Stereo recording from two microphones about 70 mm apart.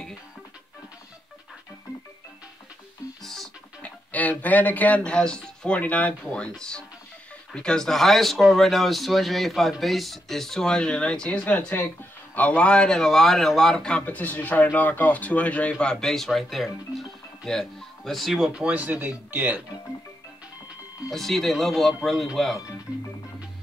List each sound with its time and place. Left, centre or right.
3.8 s speech: left
7.5 s speech: centre
14.0 s speech: left; by 18.5 s centre
18.5 s speech: centre
21.1 s speech: centre